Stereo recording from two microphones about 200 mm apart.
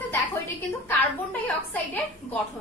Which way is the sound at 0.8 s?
10° left (ahead or behind).